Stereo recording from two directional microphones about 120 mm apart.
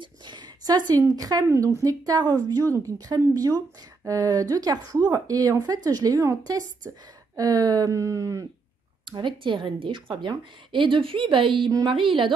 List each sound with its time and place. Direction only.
0.0 s a sound: 35° right (ahead or behind)
1.1 s speech: 30° right (ahead or behind)
9.1 s a woman's voice: 40° right (ahead or behind)